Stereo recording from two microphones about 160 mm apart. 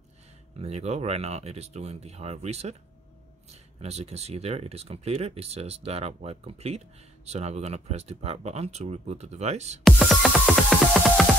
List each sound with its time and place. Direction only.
0.6 s speech: 45° right (ahead or behind)
9.8 s music: centre (ahead or behind)